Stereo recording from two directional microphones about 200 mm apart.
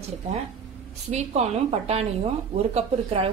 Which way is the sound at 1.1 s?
35° right (ahead or behind).